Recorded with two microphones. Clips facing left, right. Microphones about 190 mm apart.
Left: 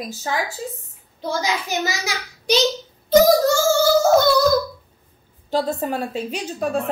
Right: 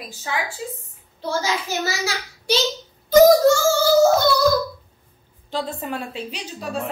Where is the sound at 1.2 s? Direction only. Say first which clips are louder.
Even; 15° left (ahead or behind).